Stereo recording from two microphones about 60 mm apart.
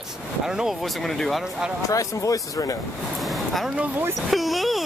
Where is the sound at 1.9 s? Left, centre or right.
Left.